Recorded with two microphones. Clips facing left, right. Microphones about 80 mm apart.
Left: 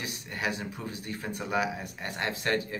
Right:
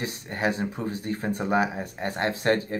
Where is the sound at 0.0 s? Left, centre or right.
Right.